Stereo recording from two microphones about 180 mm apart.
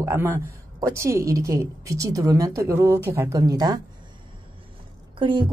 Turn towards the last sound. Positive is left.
turn(degrees=-25)  # may be behind; listen again after turning